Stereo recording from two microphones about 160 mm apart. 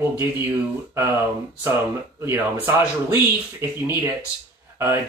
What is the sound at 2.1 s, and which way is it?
Speech, 15° right (ahead or behind).